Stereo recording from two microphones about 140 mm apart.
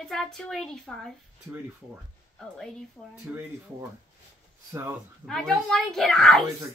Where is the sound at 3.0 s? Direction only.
10° left (ahead or behind).